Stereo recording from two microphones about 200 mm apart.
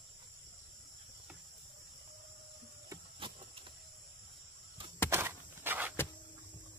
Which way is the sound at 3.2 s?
25° right (ahead or behind).